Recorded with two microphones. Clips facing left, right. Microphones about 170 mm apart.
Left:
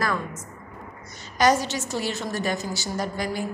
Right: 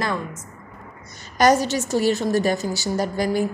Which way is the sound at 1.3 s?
45° right (ahead or behind).